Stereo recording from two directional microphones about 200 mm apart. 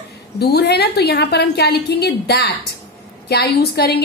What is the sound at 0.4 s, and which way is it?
A woman's voice, 55° left (ahead or behind).